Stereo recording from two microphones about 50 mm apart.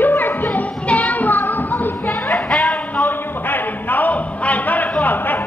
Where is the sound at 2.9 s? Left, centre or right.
Left.